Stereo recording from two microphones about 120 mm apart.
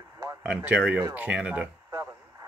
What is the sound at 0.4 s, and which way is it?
Speech, 10° right (ahead or behind).